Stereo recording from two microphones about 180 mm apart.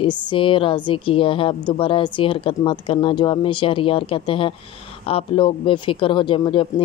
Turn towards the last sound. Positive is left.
turn(degrees=25)  # may be behind; listen again after turning